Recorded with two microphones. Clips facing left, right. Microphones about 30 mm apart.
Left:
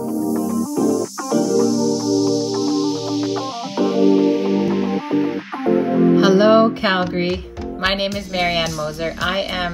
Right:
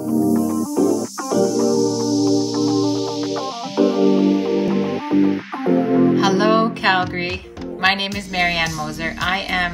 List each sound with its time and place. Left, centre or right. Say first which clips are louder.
0.3 s music: right 2 dB; centre
3.3 s music: right 2 dB; centre
6.1 s music: left 3 dB; centre
6.4 s music: left 3 dB; centre
7.8 s speech: right 2 dB; centre